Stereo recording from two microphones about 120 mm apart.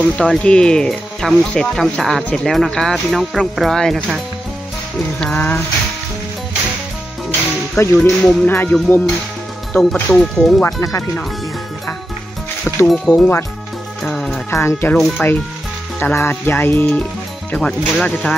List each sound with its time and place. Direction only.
0.0 s speech: 5° left (ahead or behind)
5.2 s speech: 10° left (ahead or behind)
7.2 s music: 15° left (ahead or behind)
8.0 s speech: 10° left (ahead or behind)
10.6 s speech: 25° left (ahead or behind)
12.8 s speech: 5° left (ahead or behind)
14.0 s music: 5° left (ahead or behind)
14.5 s speech: 20° left (ahead or behind)
15.0 s speech: centre (ahead or behind)
16.0 s speech: 15° left (ahead or behind)